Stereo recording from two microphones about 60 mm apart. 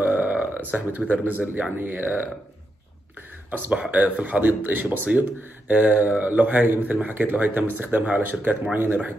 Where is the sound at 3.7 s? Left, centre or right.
Right.